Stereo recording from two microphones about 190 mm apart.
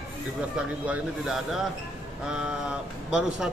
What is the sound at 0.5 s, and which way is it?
Speech, 5° right (ahead or behind).